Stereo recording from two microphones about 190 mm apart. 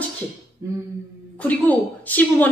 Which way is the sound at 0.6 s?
15° right (ahead or behind).